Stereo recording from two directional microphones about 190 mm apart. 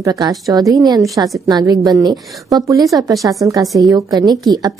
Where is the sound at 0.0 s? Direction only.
20° right (ahead or behind).